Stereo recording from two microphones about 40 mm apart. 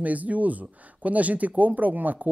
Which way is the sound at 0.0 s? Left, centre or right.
Right.